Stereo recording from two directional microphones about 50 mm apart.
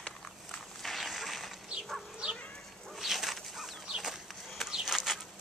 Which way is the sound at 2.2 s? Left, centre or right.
Centre.